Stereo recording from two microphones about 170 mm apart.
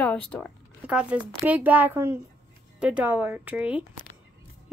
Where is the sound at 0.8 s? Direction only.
5° right (ahead or behind).